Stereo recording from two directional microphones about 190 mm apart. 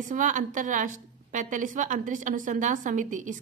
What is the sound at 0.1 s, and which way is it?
A woman's voice, 40° right (ahead or behind).